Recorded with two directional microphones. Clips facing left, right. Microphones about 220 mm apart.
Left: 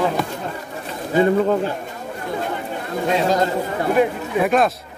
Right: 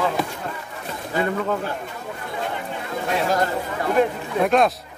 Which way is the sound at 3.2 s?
20° left (ahead or behind).